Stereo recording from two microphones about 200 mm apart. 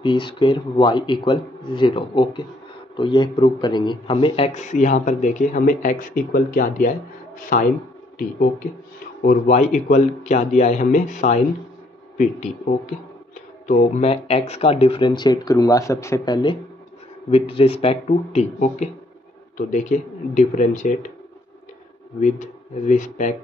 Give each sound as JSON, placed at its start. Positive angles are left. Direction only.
{"t": 0.0, "sound": "a man's voice", "side_deg": 25}
{"t": 9.2, "sound": "a man's voice", "side_deg": 40}
{"t": 17.3, "sound": "a man's voice", "side_deg": 30}
{"t": 22.2, "sound": "a man's voice", "side_deg": 40}